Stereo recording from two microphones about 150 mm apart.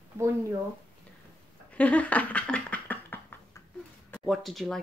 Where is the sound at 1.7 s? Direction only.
10° left (ahead or behind).